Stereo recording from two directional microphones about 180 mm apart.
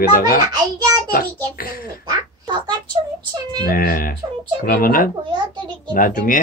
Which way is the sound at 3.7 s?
55° left (ahead or behind).